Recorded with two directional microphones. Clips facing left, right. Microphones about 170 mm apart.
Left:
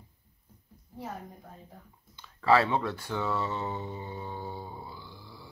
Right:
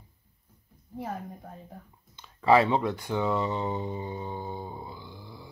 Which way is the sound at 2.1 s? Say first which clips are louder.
Right 3 dB; 20° right (ahead or behind).